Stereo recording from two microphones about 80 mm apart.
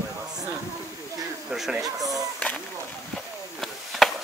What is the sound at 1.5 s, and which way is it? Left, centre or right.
Speech, centre.